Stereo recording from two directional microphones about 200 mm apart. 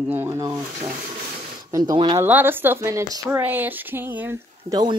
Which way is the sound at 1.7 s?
20° right (ahead or behind).